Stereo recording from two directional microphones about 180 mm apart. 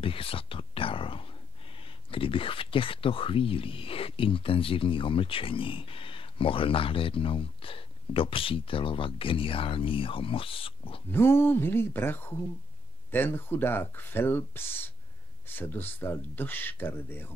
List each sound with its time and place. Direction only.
0.0 s speech: 30° left (ahead or behind)
11.1 s speech: 15° left (ahead or behind)